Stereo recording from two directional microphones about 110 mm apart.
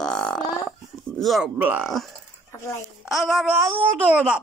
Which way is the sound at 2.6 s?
30° left (ahead or behind).